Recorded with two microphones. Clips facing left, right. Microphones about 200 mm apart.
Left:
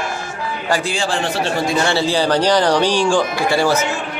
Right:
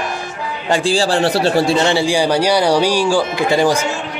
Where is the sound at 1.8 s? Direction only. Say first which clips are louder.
Right 2 dB; 15° right (ahead or behind).